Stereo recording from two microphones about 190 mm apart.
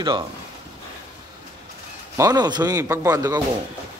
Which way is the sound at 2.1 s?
20° right (ahead or behind).